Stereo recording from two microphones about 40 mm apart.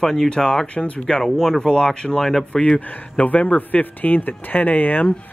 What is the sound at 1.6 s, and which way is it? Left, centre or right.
Speech, left.